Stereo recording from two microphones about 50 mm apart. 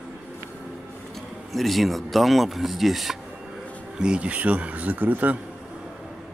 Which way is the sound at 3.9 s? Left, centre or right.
Centre.